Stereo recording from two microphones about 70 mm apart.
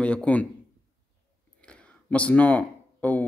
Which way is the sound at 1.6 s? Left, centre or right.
Centre.